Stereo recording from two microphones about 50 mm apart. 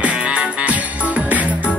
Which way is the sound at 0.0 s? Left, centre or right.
Right.